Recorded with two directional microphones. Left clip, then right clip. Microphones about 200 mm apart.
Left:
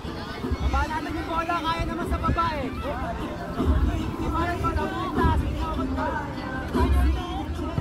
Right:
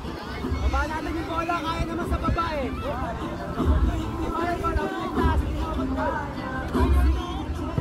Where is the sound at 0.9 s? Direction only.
20° right (ahead or behind).